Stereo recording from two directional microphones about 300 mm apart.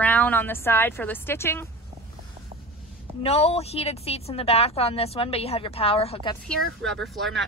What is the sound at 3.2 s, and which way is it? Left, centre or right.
Speech, centre.